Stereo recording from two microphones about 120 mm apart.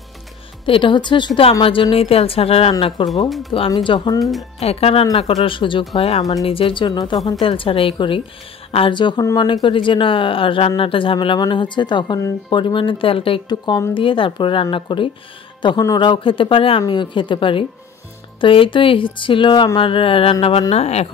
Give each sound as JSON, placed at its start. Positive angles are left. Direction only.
{"t": 0.7, "sound": "speech", "side_deg": 45}
{"t": 3.3, "sound": "speech", "side_deg": 0}
{"t": 3.7, "sound": "speech", "side_deg": 40}
{"t": 4.2, "sound": "speech", "side_deg": 0}
{"t": 4.6, "sound": "speech", "side_deg": 55}
{"t": 5.9, "sound": "speech", "side_deg": 55}
{"t": 7.4, "sound": "speech", "side_deg": 50}
{"t": 9.2, "sound": "speech", "side_deg": 30}
{"t": 9.5, "sound": "speech", "side_deg": 45}